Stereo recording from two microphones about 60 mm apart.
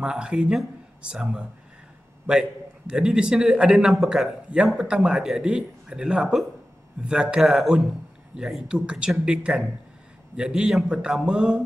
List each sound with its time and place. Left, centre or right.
0.0 s speech: centre
2.9 s speech: centre
4.5 s speech: centre
7.4 s speech: centre
8.6 s speech: centre